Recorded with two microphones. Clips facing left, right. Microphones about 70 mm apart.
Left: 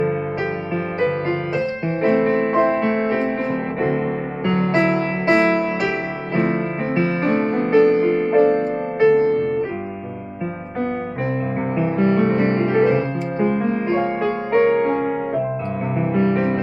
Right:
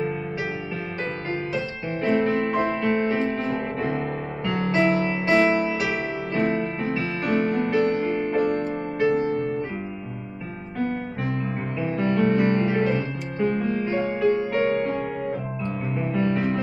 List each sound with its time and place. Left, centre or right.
2.0 s music: left
9.1 s music: left
11.8 s music: left